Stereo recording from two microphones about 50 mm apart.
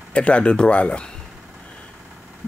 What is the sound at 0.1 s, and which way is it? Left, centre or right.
Speech, left.